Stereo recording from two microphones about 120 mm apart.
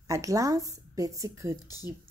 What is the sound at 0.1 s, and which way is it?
A woman's voice, 25° right (ahead or behind).